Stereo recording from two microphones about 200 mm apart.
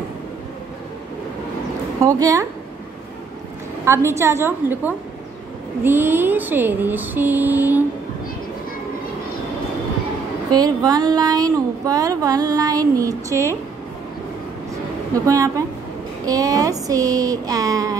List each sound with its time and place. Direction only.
2.0 s mantra: 15° right (ahead or behind)
3.8 s mantra: 15° right (ahead or behind)
10.5 s speech: 20° right (ahead or behind)
15.1 s mantra: 15° right (ahead or behind)